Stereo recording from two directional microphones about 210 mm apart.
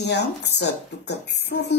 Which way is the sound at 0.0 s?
55° left (ahead or behind).